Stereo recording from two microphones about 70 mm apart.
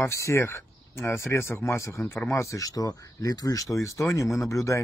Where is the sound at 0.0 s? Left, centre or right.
Left.